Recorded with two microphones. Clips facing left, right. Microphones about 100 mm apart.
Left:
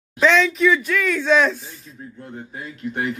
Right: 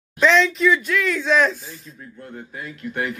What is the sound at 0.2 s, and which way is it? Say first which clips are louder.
Speech: even; centre (ahead or behind).